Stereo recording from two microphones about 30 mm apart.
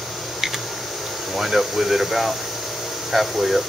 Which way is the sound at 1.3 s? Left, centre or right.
Centre.